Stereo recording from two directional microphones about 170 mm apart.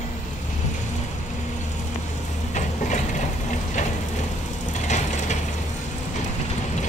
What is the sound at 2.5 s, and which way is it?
Mechanisms, 45° left (ahead or behind).